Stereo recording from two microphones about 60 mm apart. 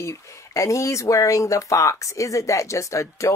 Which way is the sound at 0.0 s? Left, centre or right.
Left.